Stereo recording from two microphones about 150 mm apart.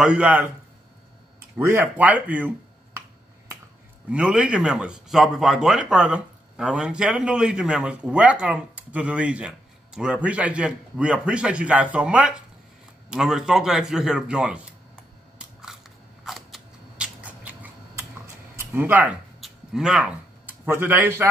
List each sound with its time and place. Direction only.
0.0 s a man's voice: 10° right (ahead or behind)
1.6 s a man's voice: 15° right (ahead or behind)
4.1 s a man's voice: 10° right (ahead or behind)
15.3 s scissors: 5° right (ahead or behind)
18.6 s speech: 15° right (ahead or behind)
19.4 s a sound: 5° right (ahead or behind)